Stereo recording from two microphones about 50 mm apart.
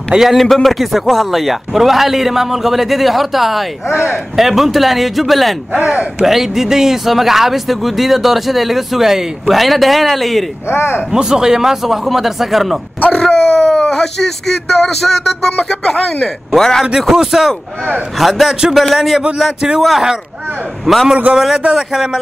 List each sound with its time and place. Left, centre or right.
0.1 s speech: centre
3.9 s speech: right
4.4 s speech: centre
5.7 s speech: right
6.2 s speech: centre
10.7 s speech: left
11.1 s speech: centre
13.1 s speech: centre
17.1 s a man's voice: centre